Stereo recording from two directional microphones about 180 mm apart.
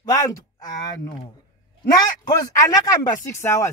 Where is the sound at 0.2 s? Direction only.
20° left (ahead or behind).